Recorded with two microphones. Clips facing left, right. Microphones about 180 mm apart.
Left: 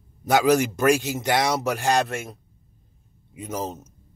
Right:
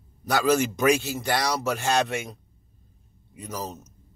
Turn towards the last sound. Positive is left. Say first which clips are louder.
# left 4 dB
turn(degrees=25)  # may be behind; listen again after turning